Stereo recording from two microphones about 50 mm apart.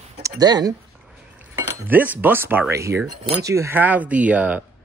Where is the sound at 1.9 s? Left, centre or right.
Right.